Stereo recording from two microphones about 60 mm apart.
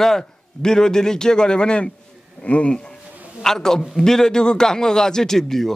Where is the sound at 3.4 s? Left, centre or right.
Centre.